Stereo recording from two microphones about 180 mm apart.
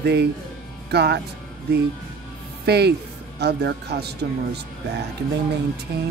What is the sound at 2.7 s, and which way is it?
Speech, 65° right (ahead or behind).